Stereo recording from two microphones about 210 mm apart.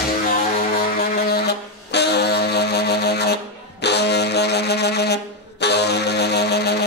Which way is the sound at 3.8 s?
55° left (ahead or behind).